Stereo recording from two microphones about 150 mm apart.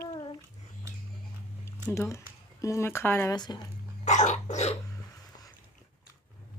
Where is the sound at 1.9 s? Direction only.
20° left (ahead or behind).